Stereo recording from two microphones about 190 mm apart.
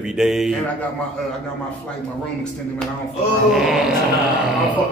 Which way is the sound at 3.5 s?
Centre (ahead or behind).